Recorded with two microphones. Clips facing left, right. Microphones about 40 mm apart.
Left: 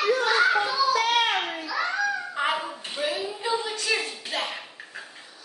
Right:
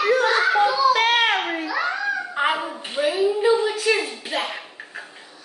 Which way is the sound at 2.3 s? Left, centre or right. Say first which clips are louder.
Right 4 dB; right.